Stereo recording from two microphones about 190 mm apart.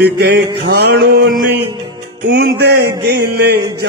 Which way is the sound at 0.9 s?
55° right (ahead or behind).